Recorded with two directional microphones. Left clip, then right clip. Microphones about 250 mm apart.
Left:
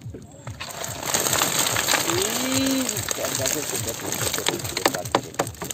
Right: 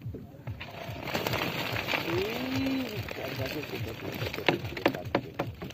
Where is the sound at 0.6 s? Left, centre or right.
Centre.